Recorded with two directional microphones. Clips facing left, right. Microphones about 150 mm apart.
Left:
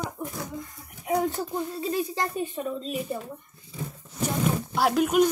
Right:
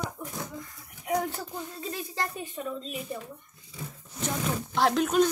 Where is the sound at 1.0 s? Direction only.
20° left (ahead or behind).